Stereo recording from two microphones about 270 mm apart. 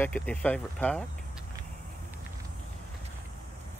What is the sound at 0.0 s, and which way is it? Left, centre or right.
Speech, centre.